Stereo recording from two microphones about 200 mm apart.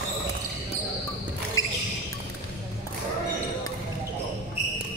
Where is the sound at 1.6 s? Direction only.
85° left.